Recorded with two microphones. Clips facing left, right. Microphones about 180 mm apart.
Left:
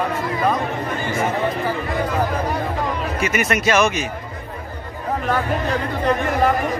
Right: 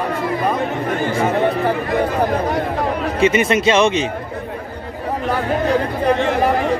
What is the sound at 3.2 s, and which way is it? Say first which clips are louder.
Speech: right 7 dB; 25° right (ahead or behind).